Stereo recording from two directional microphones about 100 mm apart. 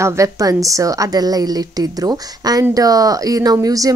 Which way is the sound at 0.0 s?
35° right (ahead or behind).